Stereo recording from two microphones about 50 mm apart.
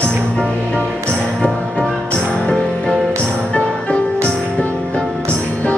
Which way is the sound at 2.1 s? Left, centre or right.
Centre.